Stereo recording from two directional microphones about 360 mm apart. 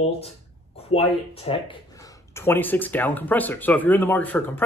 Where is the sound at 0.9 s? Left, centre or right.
Centre.